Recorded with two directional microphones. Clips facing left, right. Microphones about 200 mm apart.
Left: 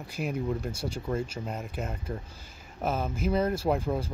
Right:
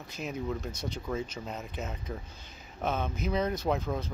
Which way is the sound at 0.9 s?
10° left (ahead or behind).